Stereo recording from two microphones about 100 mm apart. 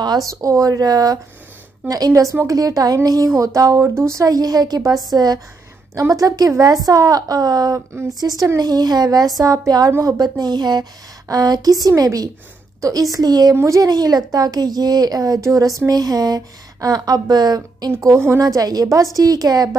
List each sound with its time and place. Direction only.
0.0 s speech: 45° right (ahead or behind)
0.3 s speech: 35° right (ahead or behind)
18.1 s a woman's voice: 25° right (ahead or behind)
18.4 s speech: 40° right (ahead or behind)